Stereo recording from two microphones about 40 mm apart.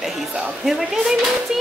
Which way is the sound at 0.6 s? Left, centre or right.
Centre.